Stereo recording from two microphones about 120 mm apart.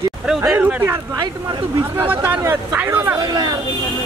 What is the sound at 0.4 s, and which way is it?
Speech, 15° right (ahead or behind).